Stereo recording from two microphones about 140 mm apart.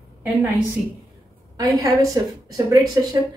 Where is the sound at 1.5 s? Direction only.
25° right (ahead or behind).